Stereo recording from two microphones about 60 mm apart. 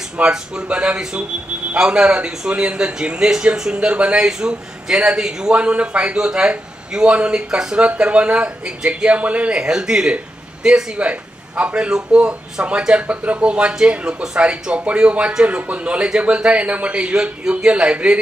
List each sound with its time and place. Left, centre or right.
0.2 s a man's voice: centre